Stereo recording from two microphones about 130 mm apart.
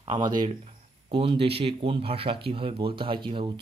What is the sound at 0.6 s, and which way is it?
Speech, 45° right (ahead or behind).